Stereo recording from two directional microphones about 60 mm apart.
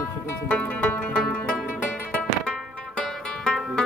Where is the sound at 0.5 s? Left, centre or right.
Left.